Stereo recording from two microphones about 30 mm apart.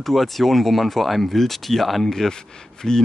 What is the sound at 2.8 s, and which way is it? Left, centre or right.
Speech, centre.